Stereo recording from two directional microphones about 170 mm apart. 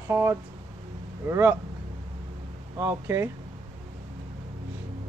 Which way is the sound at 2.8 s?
15° right (ahead or behind).